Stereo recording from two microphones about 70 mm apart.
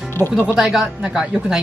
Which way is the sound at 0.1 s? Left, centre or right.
Left.